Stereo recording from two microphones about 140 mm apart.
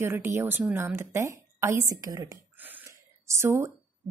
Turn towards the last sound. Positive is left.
turn(degrees=-20)  # may be behind; listen again after turning